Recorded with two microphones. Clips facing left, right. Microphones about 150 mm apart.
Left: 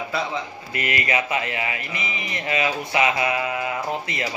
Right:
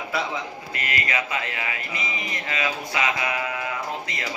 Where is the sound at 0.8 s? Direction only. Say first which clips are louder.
Left 4 dB; 25° left (ahead or behind).